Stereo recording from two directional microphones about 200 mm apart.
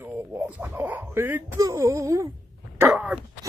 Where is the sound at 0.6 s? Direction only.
10° right (ahead or behind).